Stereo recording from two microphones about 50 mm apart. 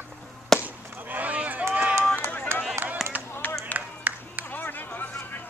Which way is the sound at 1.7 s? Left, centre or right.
Right.